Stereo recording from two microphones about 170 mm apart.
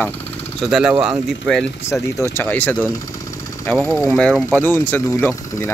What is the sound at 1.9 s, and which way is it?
Speech, 15° left (ahead or behind).